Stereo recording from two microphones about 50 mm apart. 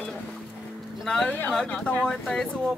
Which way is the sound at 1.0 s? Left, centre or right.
Centre.